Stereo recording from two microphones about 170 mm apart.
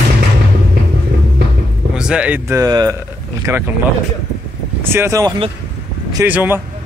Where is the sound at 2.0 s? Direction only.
5° right (ahead or behind).